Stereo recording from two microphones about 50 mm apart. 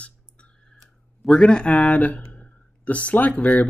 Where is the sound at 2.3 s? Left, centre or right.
Left.